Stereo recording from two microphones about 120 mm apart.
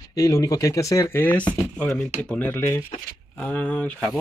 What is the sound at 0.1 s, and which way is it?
Speech, 30° left (ahead or behind).